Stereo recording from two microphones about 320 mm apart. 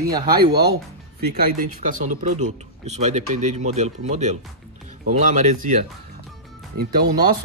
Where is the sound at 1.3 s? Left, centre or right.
Right.